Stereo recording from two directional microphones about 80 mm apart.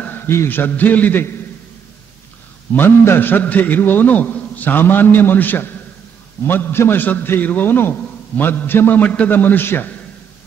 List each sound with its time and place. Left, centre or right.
0.3 s a man's voice: left
2.7 s a man's voice: left